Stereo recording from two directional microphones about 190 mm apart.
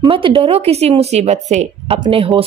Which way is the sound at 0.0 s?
25° right (ahead or behind).